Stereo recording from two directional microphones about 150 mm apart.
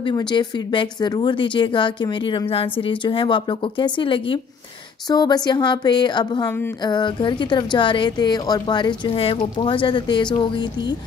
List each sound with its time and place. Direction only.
0.0 s a woman's voice: 30° left (ahead or behind)